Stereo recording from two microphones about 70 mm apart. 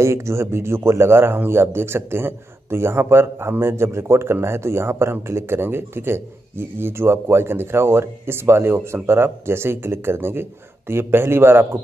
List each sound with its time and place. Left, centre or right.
0.0 s speech: right